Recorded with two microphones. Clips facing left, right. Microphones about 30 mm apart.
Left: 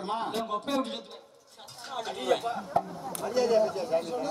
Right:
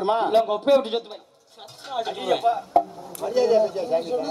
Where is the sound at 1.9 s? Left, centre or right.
Right.